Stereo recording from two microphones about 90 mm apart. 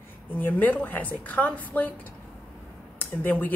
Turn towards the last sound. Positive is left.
turn(degrees=20)  # may be behind; listen again after turning